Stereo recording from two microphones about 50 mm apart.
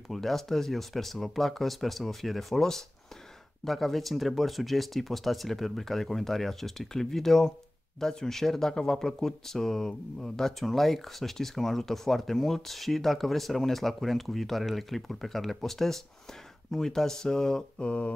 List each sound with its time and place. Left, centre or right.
0.1 s speech: centre
17.8 s mantra: left